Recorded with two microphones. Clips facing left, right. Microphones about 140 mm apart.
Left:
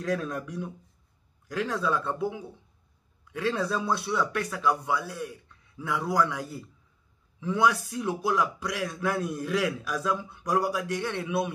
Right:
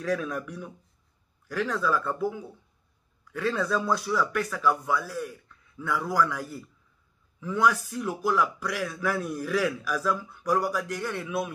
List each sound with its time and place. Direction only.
0.1 s speech: 25° left (ahead or behind)